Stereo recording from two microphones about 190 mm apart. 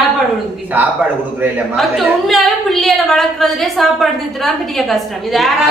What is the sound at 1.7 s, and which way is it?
A woman's voice, centre (ahead or behind).